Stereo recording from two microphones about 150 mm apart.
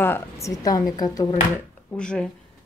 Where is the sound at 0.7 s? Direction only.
25° left (ahead or behind).